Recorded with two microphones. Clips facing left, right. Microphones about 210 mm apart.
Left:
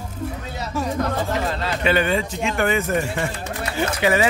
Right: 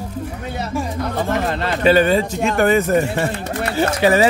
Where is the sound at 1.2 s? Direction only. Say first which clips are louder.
Right 4 dB; 60° right (ahead or behind).